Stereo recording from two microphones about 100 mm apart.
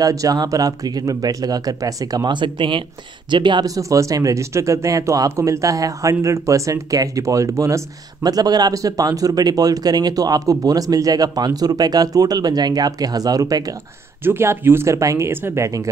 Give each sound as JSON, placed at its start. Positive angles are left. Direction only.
{"t": 0.0, "sound": "speech", "side_deg": -35}
{"t": 3.6, "sound": "speech", "side_deg": -35}
{"t": 14.2, "sound": "speech", "side_deg": -25}